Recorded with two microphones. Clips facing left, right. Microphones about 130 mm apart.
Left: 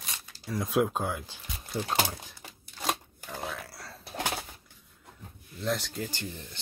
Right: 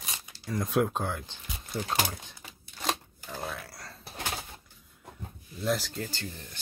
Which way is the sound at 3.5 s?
Centre (ahead or behind).